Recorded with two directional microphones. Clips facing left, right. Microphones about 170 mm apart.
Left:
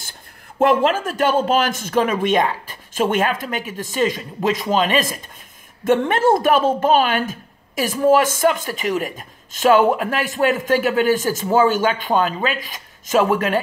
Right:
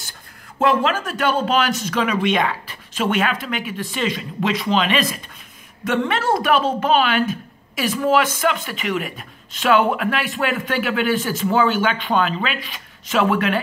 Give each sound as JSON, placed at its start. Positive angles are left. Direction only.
{"t": 0.6, "sound": "speech", "side_deg": 50}